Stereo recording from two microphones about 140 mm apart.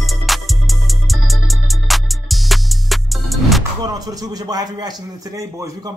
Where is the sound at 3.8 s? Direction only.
25° right (ahead or behind).